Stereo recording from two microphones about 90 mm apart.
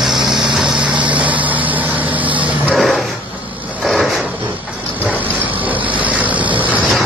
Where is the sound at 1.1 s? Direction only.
15° right (ahead or behind).